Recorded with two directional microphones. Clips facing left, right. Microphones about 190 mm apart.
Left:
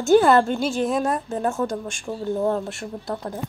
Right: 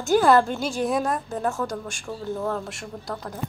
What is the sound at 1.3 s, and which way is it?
Speech, 25° left (ahead or behind).